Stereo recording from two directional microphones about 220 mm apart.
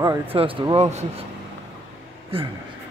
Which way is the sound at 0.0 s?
20° right (ahead or behind).